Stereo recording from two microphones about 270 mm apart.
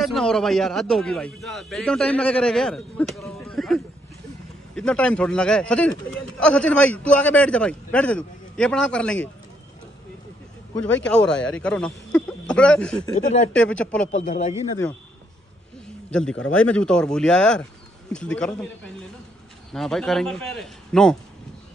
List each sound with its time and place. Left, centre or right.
0.0 s a man's voice: centre
11.1 s a man's voice: centre
13.0 s speech: left
13.5 s a man's voice: centre
14.0 s speech: left
16.1 s a man's voice: centre
19.7 s a man's voice: centre